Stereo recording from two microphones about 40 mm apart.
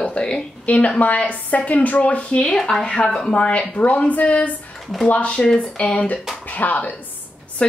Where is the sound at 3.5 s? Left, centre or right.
Left.